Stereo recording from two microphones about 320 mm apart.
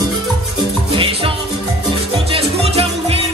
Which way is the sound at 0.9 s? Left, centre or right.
Centre.